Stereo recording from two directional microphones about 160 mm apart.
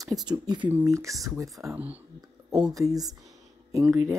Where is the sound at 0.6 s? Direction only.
15° right (ahead or behind).